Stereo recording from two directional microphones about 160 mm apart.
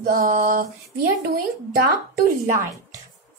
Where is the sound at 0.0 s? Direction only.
60° right (ahead or behind).